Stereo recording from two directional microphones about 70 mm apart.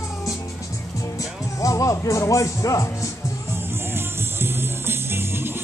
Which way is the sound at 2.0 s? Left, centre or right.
Left.